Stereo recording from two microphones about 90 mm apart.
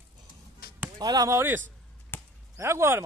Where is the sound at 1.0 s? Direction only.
40° right (ahead or behind).